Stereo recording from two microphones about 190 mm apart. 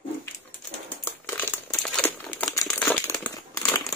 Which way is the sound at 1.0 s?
10° left (ahead or behind).